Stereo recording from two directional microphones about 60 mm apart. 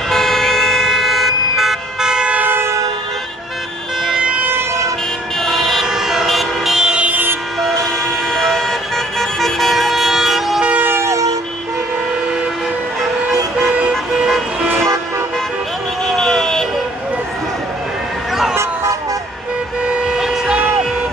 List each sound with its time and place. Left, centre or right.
0.1 s vehicle: centre
2.4 s train: right
4.2 s siren: centre
5.4 s emergency vehicle: centre; by 7.2 s right
8.3 s vehicle: centre
10.6 s vehicle: centre
11.1 s vehicle: right
13.7 s vehicle: right
16.1 s vehicle: centre
19.9 s vehicle: centre